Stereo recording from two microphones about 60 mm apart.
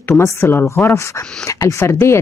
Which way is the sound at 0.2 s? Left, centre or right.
Left.